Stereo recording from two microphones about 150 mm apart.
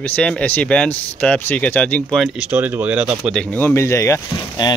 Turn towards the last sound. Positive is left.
turn(degrees=25)  # may be behind; listen again after turning